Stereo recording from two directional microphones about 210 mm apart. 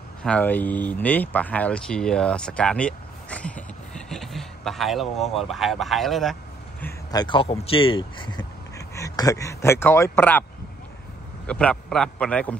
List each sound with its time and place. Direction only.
0.2 s speech: 5° left (ahead or behind)
6.8 s a man's voice: 20° left (ahead or behind)
11.4 s a man's voice: 5° left (ahead or behind)